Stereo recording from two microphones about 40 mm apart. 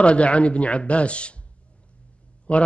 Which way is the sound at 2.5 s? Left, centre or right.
Left.